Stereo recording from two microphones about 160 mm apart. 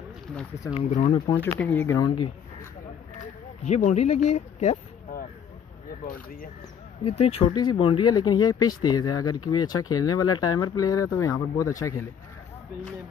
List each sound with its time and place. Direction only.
0.7 s speech: 45° left (ahead or behind)
1.4 s speech: 10° left (ahead or behind)
2.0 s speech: 25° left (ahead or behind)
3.6 s speech: 45° left (ahead or behind)
6.0 s speech: 60° left (ahead or behind)
7.1 s speech: 35° left (ahead or behind); by 12.1 s 20° left (ahead or behind)